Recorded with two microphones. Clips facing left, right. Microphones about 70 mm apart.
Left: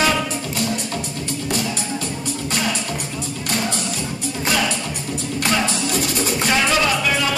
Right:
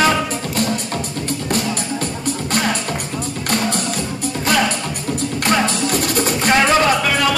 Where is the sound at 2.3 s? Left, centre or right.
Right.